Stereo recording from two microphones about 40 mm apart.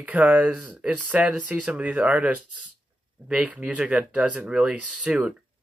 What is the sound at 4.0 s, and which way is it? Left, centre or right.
Speech, right.